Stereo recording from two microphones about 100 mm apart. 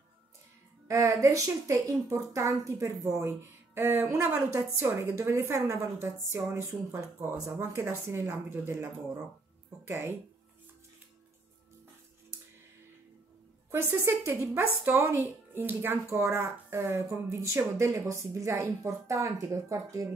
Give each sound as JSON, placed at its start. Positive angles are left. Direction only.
{"t": 0.8, "sound": "speech", "side_deg": -30}
{"t": 13.7, "sound": "speech", "side_deg": -25}